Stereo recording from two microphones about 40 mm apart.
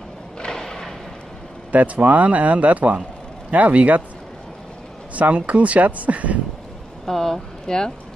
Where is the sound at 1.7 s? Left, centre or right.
Right.